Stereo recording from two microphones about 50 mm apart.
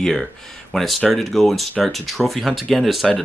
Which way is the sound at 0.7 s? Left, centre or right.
Centre.